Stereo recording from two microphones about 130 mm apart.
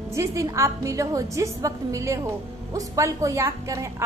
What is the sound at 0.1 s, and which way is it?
A woman's voice, 25° right (ahead or behind).